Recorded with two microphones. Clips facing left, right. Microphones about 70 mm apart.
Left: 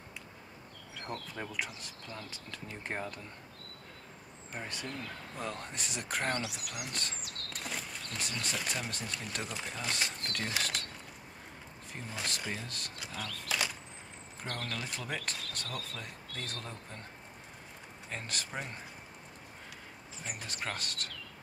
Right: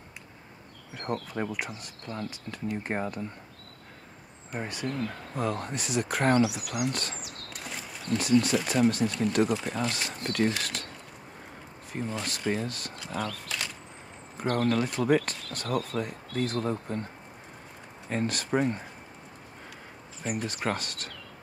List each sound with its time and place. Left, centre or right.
0.9 s speech: centre
4.6 s speech: centre
11.9 s speech: centre
12.6 s speech: centre
18.0 s speech: centre
20.2 s speech: centre